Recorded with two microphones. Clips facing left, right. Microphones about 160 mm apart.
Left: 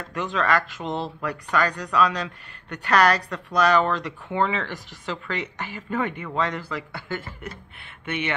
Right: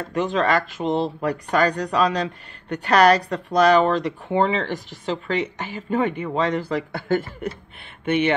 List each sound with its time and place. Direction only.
0.1 s speech: 25° right (ahead or behind)
1.5 s a woman's voice: 35° right (ahead or behind)